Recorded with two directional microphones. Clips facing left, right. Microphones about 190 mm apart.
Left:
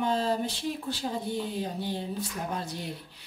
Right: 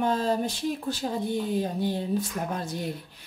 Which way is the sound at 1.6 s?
50° right (ahead or behind).